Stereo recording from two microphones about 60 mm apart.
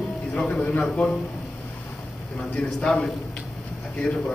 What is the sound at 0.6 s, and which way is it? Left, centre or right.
Speech, centre.